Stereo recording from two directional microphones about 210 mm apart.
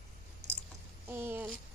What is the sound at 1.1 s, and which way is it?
Speech, 10° right (ahead or behind).